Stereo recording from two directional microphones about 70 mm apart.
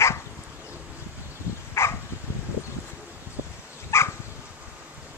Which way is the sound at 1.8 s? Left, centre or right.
Left.